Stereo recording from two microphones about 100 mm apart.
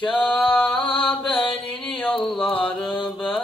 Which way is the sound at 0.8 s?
60° left (ahead or behind).